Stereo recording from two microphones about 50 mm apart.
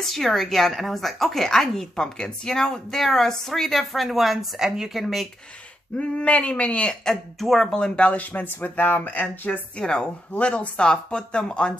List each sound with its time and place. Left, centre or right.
0.0 s a woman's voice: centre
5.9 s speech: left
7.1 s a woman's voice: centre
7.7 s speech: centre
9.8 s a woman's voice: centre